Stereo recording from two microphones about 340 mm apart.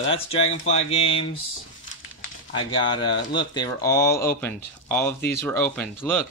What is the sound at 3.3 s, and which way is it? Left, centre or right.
Speech, centre.